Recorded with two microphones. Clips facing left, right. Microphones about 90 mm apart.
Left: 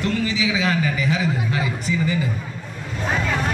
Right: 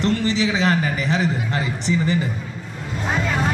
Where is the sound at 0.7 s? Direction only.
40° right (ahead or behind).